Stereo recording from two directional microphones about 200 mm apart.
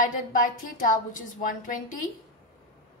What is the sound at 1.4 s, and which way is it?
Speech, 40° left (ahead or behind).